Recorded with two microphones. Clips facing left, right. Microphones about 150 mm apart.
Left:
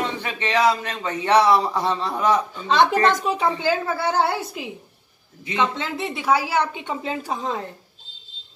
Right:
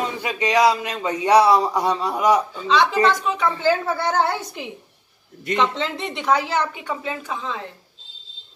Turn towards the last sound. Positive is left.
turn(degrees=40)  # may be behind; listen again after turning